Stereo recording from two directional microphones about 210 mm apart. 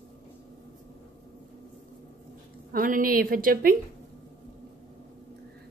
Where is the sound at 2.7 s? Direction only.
40° right (ahead or behind).